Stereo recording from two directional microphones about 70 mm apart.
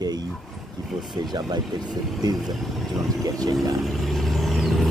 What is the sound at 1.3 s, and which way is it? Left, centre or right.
Speech, right.